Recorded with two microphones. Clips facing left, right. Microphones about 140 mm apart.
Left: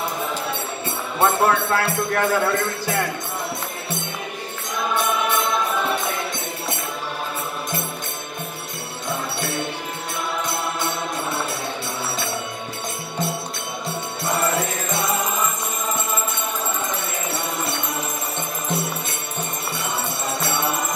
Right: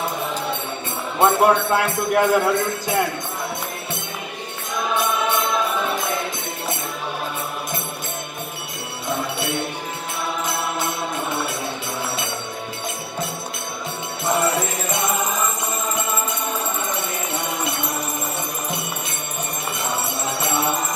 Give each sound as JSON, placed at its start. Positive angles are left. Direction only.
{"t": 1.2, "sound": "speech", "side_deg": -15}